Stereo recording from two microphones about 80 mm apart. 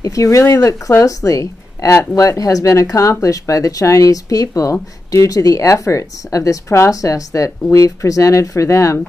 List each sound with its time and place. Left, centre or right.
0.0 s speech: left